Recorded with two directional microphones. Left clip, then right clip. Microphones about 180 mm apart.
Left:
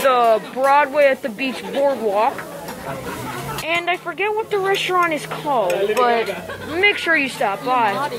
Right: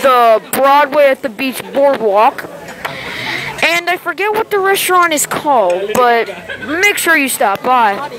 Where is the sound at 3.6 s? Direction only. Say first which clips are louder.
Right 8 dB; 40° right (ahead or behind).